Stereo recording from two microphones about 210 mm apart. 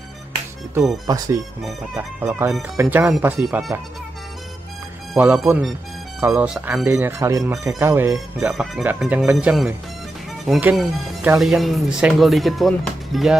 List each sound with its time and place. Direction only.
1.0 s speech: 15° right (ahead or behind)
1.6 s speech: 5° right (ahead or behind)
5.1 s speech: 5° right (ahead or behind)